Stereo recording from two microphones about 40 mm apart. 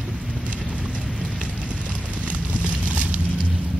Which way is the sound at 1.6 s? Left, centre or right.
Right.